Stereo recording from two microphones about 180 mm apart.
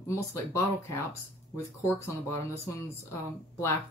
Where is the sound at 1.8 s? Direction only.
15° left (ahead or behind).